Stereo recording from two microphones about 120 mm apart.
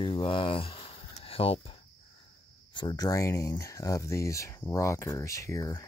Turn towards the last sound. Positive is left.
turn(degrees=25)  # may be behind; listen again after turning